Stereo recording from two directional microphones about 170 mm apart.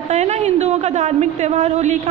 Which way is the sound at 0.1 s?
45° right (ahead or behind).